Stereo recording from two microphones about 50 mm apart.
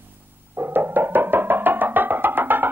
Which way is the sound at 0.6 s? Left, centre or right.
Right.